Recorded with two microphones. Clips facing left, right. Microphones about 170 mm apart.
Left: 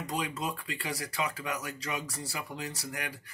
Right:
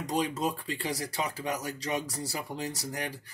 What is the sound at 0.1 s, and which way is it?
Speech, 35° right (ahead or behind).